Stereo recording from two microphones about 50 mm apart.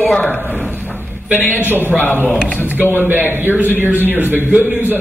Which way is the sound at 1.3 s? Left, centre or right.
Left.